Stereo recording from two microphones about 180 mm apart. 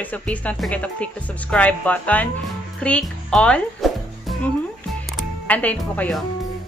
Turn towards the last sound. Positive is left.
turn(degrees=10)  # may be behind; listen again after turning